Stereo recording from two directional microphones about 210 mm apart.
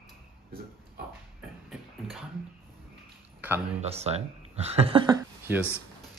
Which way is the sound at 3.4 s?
10° right (ahead or behind).